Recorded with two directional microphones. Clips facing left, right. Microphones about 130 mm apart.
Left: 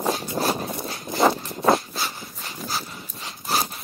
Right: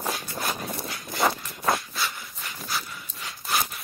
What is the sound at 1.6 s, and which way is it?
Dog, 30° left (ahead or behind).